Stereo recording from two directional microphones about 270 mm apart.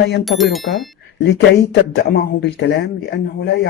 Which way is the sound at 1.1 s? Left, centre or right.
Left.